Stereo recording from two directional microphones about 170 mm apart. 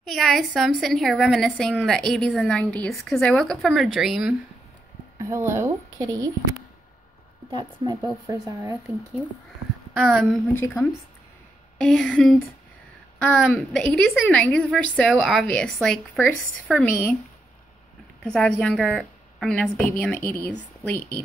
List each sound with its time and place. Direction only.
0.1 s a woman's voice: centre (ahead or behind)
5.2 s a woman's voice: 15° right (ahead or behind)
7.5 s a woman's voice: 25° right (ahead or behind)
9.9 s a woman's voice: centre (ahead or behind)
11.8 s a woman's voice: 5° left (ahead or behind)
18.2 s a woman's voice: 5° left (ahead or behind)